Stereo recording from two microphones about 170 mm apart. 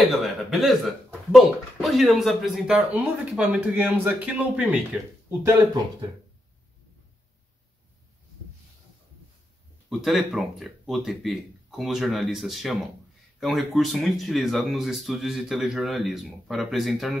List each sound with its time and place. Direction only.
0.0 s speech: centre (ahead or behind)
9.8 s speech: centre (ahead or behind)